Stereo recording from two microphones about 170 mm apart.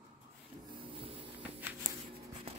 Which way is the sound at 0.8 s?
30° right (ahead or behind).